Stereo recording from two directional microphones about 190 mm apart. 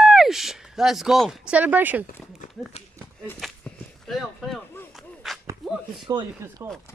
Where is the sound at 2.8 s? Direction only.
35° left (ahead or behind).